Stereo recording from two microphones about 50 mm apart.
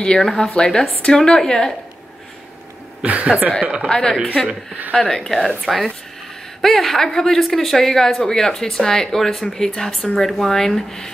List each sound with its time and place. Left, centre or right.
0.0 s speech: centre
3.1 s speech: right
3.9 s speech: centre